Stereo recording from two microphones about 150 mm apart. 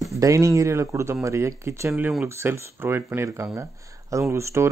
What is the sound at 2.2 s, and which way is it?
Speech, 15° right (ahead or behind).